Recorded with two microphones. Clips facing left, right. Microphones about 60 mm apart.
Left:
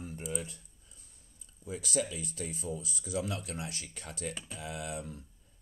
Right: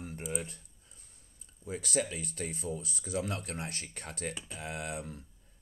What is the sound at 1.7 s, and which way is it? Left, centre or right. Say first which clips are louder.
Speech: right 1 dB; right.